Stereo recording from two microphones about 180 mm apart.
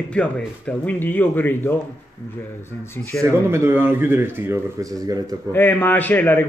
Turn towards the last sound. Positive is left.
turn(degrees=10)  # may be behind; listen again after turning